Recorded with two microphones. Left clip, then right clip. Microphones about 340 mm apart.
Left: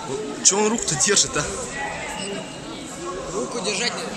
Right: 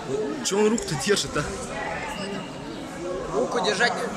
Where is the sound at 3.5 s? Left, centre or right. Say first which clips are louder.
Right 3 dB; right.